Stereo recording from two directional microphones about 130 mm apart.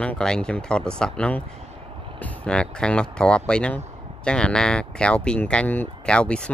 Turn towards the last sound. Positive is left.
turn(degrees=5)  # may be behind; listen again after turning